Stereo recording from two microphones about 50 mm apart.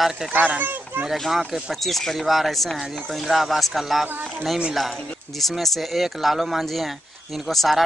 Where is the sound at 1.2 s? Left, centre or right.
Centre.